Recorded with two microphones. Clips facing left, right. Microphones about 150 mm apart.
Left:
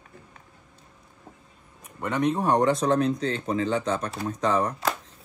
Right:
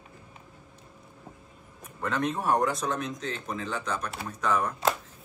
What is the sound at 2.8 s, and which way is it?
Speech, 35° left (ahead or behind).